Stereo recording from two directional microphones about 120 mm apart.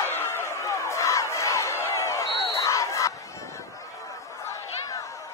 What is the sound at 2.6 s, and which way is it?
Battle cry, 25° left (ahead or behind).